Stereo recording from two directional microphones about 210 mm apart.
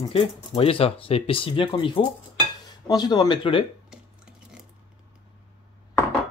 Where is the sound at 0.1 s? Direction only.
25° left (ahead or behind).